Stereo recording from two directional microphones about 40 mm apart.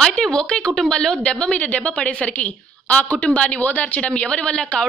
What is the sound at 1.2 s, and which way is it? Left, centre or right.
A woman's voice, left.